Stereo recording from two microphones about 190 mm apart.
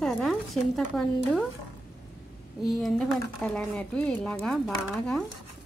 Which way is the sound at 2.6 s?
Centre (ahead or behind).